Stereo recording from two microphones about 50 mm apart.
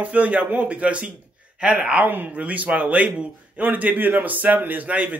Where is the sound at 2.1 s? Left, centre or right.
Right.